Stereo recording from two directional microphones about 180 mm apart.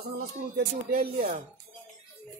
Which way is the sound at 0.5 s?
55° right (ahead or behind).